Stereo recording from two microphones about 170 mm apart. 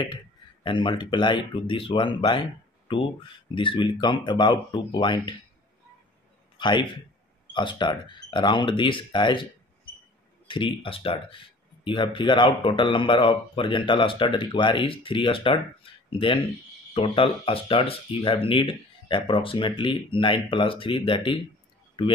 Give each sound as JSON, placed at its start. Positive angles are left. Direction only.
{"t": 0.7, "sound": "speech", "side_deg": 30}
{"t": 6.6, "sound": "speech", "side_deg": 25}
{"t": 10.5, "sound": "speech", "side_deg": 30}